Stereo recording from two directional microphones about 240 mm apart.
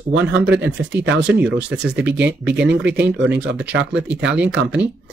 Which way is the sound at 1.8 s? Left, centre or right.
Centre.